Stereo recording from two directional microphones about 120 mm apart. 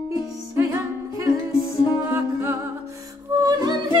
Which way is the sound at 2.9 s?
30° right (ahead or behind).